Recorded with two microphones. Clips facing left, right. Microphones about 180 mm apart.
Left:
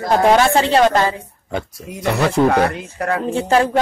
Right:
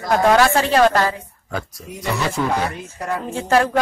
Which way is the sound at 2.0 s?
65° left (ahead or behind).